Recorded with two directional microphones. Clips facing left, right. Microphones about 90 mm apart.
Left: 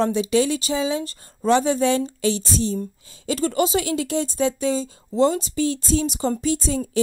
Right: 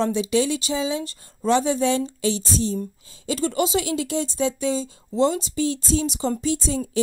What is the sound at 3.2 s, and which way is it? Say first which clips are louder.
A woman's voice: left 2 dB; 50° left (ahead or behind).